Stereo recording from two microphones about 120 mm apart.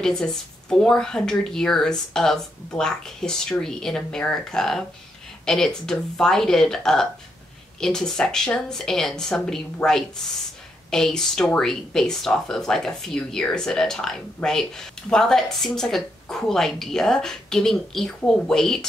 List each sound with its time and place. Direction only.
0.0 s speech: 5° left (ahead or behind)